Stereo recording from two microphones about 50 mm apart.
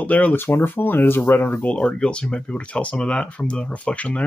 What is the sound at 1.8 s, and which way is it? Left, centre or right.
Speech, centre.